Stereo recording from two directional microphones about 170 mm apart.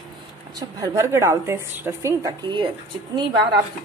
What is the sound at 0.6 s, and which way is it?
A woman's voice, 20° right (ahead or behind).